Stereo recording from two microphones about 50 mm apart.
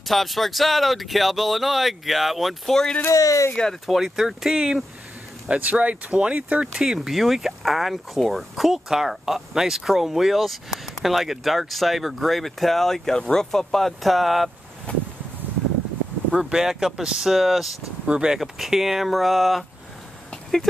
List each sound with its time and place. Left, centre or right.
0.0 s speech: centre
3.1 s speech: left
3.8 s speech: centre
5.5 s speech: right
6.7 s speech: centre
14.9 s a sound: left
16.3 s speech: centre
18.0 s speech: centre
18.4 s speech: centre